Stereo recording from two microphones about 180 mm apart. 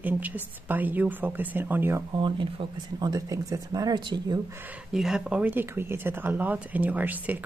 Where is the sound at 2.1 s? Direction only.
25° right (ahead or behind).